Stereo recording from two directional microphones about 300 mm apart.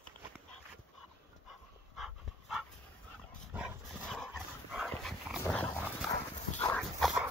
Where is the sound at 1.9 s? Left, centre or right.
Centre.